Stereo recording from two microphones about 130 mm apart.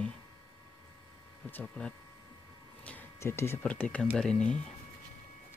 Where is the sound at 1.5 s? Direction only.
10° left (ahead or behind).